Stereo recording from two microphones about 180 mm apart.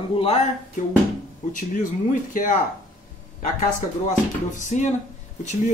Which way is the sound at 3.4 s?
45° left (ahead or behind).